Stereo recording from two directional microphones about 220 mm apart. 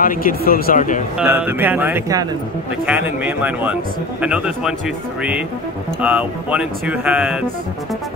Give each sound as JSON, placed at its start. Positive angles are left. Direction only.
{"t": 0.0, "sound": "speech", "side_deg": 40}
{"t": 1.1, "sound": "speech", "side_deg": -5}